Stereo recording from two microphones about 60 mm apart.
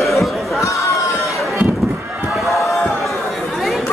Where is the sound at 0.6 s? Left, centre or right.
Left.